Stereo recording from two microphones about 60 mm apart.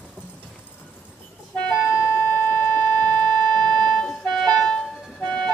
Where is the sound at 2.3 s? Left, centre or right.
Left.